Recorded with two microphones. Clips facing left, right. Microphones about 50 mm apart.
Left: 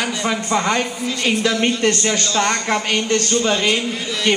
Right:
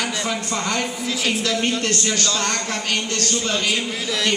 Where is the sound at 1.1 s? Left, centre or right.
Centre.